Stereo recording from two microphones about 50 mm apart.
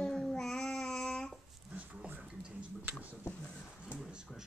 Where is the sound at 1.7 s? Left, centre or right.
Right.